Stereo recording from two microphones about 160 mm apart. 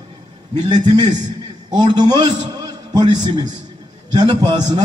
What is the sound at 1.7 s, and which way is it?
A man's voice, 25° right (ahead or behind).